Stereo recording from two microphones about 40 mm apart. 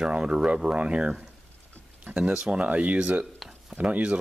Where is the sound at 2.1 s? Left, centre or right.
Right.